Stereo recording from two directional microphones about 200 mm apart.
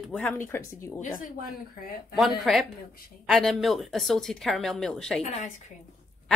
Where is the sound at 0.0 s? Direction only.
5° left (ahead or behind).